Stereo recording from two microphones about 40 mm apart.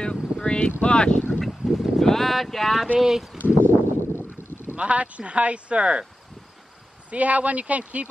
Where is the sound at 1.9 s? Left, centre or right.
Centre.